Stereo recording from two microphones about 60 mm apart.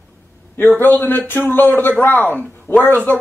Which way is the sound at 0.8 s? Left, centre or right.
Left.